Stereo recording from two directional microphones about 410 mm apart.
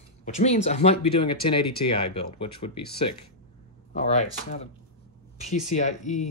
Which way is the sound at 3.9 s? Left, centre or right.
Centre.